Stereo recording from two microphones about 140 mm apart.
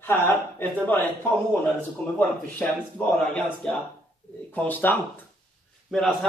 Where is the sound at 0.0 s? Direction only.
15° left (ahead or behind).